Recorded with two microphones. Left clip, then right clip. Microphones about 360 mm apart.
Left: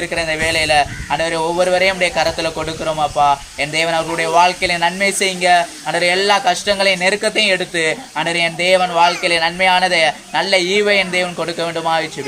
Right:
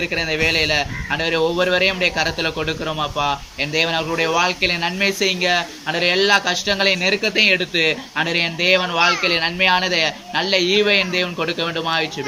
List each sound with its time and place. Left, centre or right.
0.1 s speech: left